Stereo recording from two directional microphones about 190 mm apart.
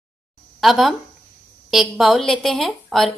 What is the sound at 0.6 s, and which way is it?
A woman's voice, centre (ahead or behind).